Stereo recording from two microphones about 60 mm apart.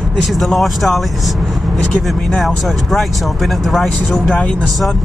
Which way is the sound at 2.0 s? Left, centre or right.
Centre.